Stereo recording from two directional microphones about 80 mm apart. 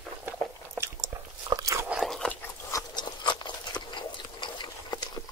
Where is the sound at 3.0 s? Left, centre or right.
Left.